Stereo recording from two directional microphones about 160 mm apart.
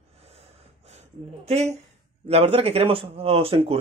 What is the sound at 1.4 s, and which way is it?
Speech, 40° right (ahead or behind).